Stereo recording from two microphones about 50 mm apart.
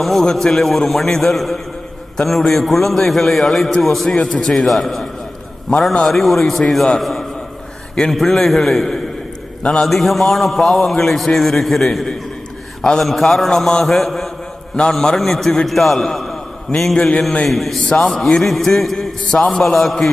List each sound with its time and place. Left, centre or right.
0.0 s a man's voice: centre
5.7 s a man's voice: centre
6.0 s a man's voice: centre
7.0 s a sound: centre
8.1 s a man's voice: centre
9.8 s a man's voice: centre
13.8 s a sound: centre
14.8 s a man's voice: centre
15.1 s a man's voice: centre
19.2 s a man's voice: centre
19.5 s a man's voice: centre